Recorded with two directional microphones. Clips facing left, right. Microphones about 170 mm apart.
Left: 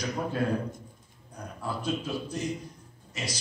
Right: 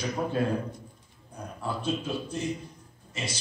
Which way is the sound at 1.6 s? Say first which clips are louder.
Right 1 dB; 25° right (ahead or behind).